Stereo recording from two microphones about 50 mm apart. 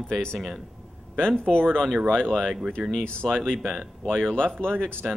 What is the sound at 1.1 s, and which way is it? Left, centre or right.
Speech, centre.